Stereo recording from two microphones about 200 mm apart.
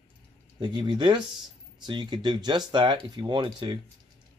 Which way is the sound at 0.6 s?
20° right (ahead or behind).